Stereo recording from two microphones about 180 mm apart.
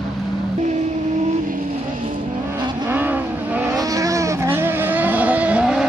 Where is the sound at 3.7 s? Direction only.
20° right (ahead or behind).